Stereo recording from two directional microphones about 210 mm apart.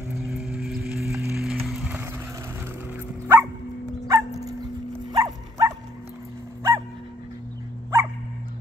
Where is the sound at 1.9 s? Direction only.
10° right (ahead or behind).